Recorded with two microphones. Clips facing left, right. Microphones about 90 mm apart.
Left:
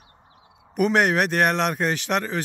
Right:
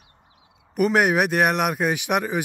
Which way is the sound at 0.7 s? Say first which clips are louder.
Right 1 dB; 5° right (ahead or behind).